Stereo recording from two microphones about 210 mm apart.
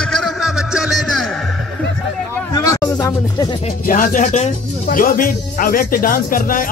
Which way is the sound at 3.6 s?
40° left (ahead or behind).